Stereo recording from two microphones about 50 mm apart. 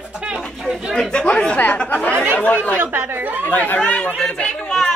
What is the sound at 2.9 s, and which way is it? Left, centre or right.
Speech, right.